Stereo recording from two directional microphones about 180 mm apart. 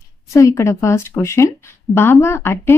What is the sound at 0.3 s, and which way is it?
A woman's voice, 15° left (ahead or behind).